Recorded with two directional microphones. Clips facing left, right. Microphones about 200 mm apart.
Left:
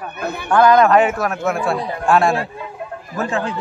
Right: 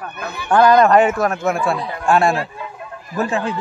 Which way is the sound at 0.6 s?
Centre (ahead or behind).